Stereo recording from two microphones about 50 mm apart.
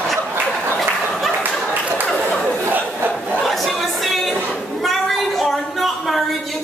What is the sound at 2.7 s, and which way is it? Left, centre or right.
Crowd, right.